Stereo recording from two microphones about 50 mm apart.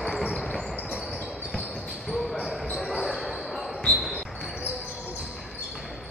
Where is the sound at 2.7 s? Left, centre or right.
Centre.